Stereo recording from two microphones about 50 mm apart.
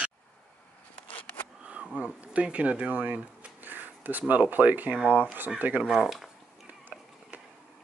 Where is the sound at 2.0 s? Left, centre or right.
Right.